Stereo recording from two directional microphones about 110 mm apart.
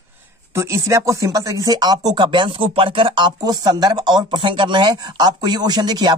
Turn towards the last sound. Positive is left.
turn(degrees=-40)  # may be behind; listen again after turning